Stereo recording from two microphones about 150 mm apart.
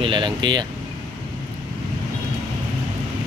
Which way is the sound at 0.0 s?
30° right (ahead or behind).